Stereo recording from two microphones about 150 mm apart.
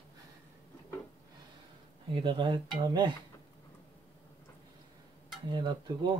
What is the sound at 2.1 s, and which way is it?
Speech, 35° right (ahead or behind).